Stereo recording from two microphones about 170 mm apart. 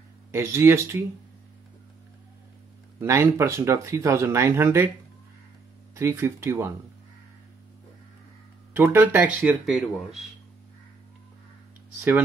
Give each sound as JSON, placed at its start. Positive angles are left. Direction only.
{"t": 0.3, "sound": "speech", "side_deg": -15}
{"t": 3.0, "sound": "speech", "side_deg": -15}
{"t": 5.9, "sound": "speech", "side_deg": -15}
{"t": 8.7, "sound": "speech", "side_deg": -10}